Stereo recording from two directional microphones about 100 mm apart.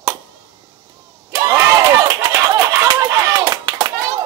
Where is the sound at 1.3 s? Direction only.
40° right (ahead or behind).